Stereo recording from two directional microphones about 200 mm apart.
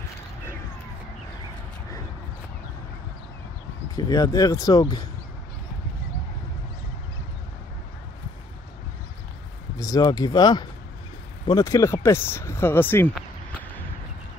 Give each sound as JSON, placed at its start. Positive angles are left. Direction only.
{"t": 3.9, "sound": "speech", "side_deg": 20}
{"t": 9.8, "sound": "speech", "side_deg": 20}